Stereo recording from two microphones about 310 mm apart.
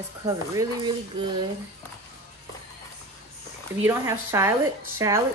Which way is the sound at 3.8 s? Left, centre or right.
Centre.